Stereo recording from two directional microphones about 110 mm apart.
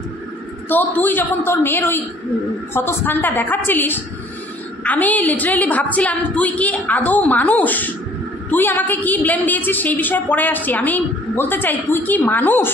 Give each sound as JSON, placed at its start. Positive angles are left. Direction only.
{"t": 0.7, "sound": "a woman's voice", "side_deg": 15}